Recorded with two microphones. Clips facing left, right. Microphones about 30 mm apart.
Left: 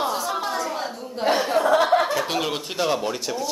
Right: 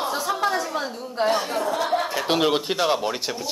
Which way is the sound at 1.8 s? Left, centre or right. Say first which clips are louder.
Left 4 dB; left.